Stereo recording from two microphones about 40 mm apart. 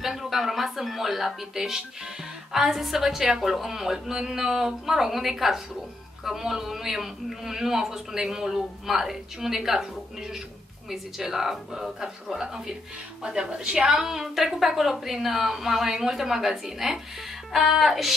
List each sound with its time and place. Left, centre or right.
0.0 s a man's voice: centre
10.9 s a man's voice: centre
13.2 s a woman's voice: right
13.8 s a man's voice: centre